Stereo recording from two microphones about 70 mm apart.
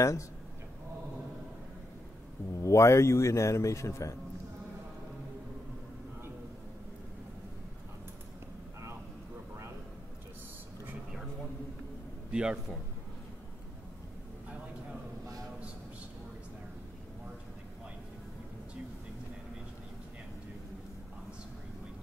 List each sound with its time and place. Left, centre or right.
2.5 s a man's voice: left
12.3 s a man's voice: centre